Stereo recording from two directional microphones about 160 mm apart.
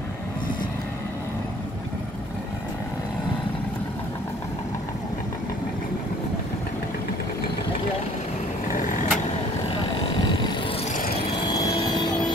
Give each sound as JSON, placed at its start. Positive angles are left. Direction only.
{"t": 8.6, "sound": "vehicle", "side_deg": 55}
{"t": 11.1, "sound": "vehicle", "side_deg": 25}